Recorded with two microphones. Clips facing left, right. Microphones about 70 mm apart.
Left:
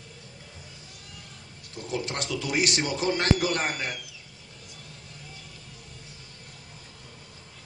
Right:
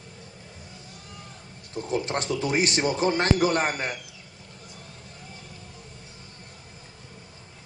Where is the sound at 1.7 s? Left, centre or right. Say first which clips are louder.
Right 4 dB; right.